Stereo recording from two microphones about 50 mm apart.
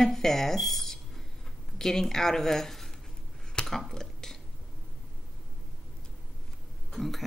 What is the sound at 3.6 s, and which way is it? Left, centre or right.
Dishes, centre.